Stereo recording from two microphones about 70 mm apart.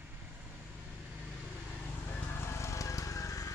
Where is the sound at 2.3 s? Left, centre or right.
Left.